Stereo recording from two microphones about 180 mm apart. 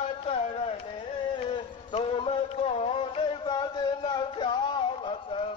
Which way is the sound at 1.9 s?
30° left (ahead or behind).